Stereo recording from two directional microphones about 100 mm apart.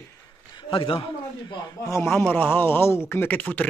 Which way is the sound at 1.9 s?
25° left (ahead or behind).